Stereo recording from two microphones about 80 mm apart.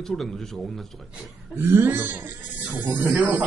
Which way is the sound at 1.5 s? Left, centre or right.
Right.